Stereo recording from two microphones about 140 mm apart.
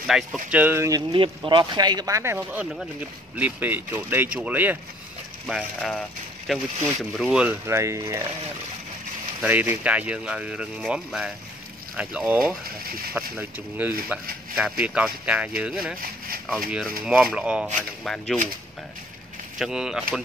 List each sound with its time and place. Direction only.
0.0 s speech: 5° right (ahead or behind); by 1.0 s 20° right (ahead or behind)
1.1 s speech: 35° right (ahead or behind); by 4.7 s 10° right (ahead or behind)
5.5 s speech: 5° left (ahead or behind)
7.6 s speech: 20° right (ahead or behind)
9.4 s speech: 10° right (ahead or behind)
17.2 s speech: 5° right (ahead or behind)
19.6 s speech: 5° right (ahead or behind)